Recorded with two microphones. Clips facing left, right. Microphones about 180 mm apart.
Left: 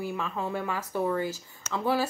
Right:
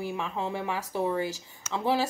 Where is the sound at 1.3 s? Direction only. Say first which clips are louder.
Left 1 dB; 75° right (ahead or behind).